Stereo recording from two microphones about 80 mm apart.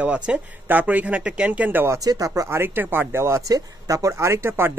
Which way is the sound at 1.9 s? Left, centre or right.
Right.